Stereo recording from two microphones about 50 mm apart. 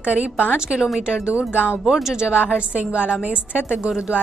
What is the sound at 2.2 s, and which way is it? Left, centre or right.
Speech, right.